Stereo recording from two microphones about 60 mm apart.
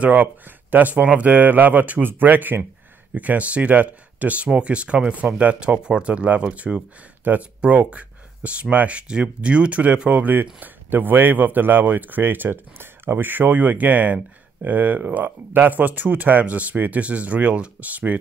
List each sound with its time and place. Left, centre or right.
0.0 s speech: right